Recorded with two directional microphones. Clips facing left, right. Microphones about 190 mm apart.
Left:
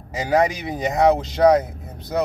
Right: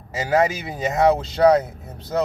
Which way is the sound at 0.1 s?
15° left (ahead or behind).